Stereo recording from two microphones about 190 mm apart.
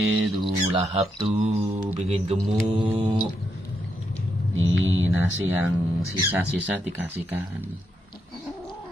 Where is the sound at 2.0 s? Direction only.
35° right (ahead or behind).